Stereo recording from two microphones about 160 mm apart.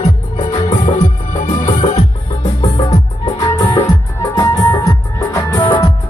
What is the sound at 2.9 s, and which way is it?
Music, 25° left (ahead or behind).